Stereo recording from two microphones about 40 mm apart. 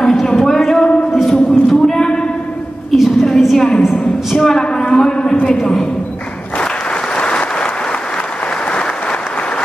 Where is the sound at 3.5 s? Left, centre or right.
Centre.